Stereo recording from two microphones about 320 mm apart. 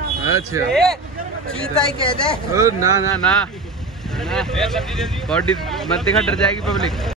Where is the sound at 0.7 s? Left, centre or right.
Centre.